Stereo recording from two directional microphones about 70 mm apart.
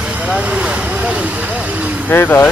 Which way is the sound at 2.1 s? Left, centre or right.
Left.